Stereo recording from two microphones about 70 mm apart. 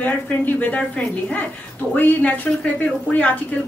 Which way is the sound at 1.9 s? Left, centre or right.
Left.